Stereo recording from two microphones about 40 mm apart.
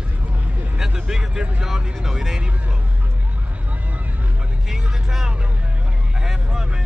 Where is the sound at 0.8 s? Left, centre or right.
Centre.